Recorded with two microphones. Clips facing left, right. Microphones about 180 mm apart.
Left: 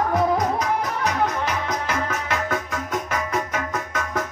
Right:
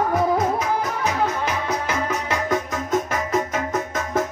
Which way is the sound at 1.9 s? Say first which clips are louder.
Right 1 dB; 15° right (ahead or behind).